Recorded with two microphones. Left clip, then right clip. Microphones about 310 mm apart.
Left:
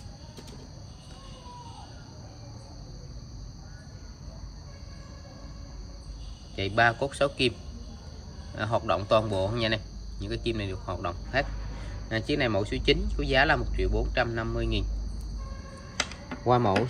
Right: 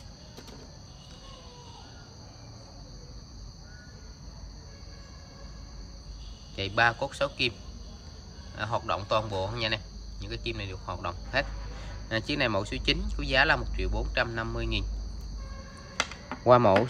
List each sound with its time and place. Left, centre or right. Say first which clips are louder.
6.5 s speech: left 1 dB; centre
8.5 s speech: left 3 dB; centre
16.4 s speech: right 4 dB; right